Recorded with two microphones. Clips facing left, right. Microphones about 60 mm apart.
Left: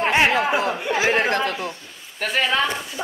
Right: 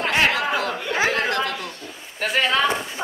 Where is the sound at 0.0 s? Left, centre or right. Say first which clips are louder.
Left 2 dB; left.